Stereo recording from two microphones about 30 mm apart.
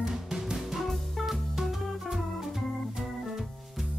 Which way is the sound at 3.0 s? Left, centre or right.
Centre.